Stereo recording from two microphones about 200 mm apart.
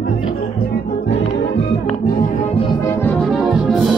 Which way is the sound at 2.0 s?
45° left (ahead or behind).